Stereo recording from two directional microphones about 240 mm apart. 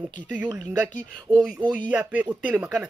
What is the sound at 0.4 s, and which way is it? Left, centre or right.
Speech, centre.